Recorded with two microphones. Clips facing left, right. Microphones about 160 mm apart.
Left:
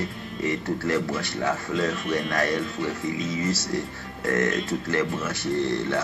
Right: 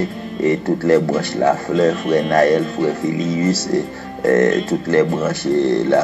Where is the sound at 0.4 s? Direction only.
40° right (ahead or behind).